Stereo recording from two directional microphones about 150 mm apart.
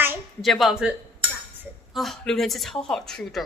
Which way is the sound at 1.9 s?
Centre (ahead or behind).